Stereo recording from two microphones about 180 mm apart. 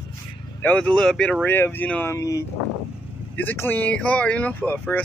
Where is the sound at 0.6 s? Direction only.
5° left (ahead or behind).